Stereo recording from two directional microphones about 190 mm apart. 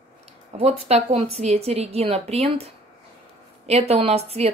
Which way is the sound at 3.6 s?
35° right (ahead or behind).